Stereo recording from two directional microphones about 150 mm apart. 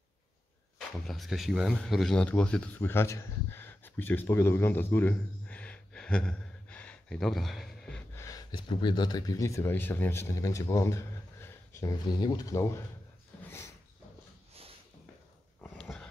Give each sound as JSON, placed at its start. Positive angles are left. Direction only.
{"t": 0.7, "sound": "speech", "side_deg": 0}
{"t": 8.1, "sound": "speech", "side_deg": 20}
{"t": 15.8, "sound": "a sound", "side_deg": 5}